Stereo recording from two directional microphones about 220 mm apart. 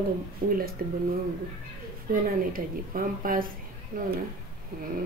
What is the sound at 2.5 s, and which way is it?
Speech, 40° right (ahead or behind).